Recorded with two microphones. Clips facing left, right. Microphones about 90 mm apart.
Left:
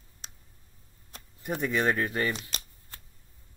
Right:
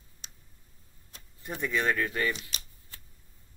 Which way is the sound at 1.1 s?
45° left (ahead or behind).